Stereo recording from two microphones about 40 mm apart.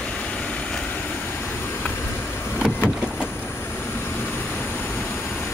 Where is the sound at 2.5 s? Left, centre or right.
Left.